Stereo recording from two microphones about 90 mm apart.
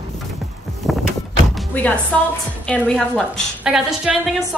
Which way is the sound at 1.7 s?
15° left (ahead or behind).